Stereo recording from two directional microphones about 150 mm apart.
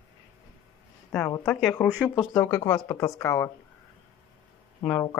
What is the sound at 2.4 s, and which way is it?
Speech, 25° left (ahead or behind).